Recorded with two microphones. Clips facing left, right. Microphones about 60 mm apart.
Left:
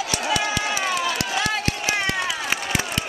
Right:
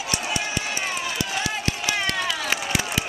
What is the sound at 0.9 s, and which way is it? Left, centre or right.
Run, left.